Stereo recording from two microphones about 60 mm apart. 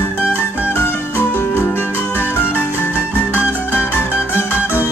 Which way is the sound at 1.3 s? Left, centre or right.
Left.